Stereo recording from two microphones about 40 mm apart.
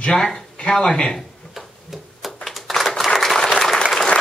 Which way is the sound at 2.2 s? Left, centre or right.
Centre.